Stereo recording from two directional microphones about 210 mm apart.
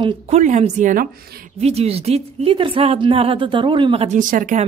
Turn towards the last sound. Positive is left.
turn(degrees=-40)  # may be behind; listen again after turning